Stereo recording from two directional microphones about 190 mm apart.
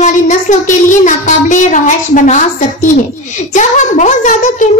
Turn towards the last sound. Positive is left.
turn(degrees=40)  # may be behind; listen again after turning